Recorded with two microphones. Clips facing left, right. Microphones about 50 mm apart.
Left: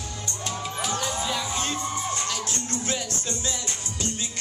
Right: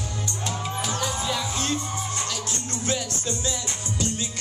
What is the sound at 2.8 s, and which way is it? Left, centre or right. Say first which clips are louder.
Music: right 2 dB; left.